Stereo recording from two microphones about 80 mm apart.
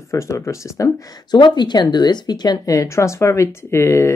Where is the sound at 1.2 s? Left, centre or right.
Left.